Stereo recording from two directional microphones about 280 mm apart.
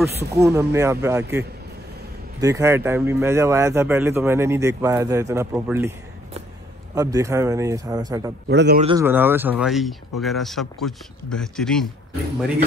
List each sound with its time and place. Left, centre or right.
0.3 s speech: centre
2.4 s speech: centre
7.0 s speech: centre
8.5 s a man's voice: right
8.8 s speech: centre